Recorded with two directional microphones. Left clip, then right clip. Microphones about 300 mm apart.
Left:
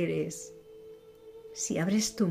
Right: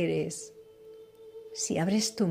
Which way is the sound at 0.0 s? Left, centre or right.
Centre.